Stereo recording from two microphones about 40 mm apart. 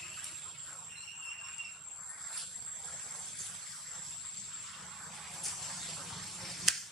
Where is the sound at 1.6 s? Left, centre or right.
Centre.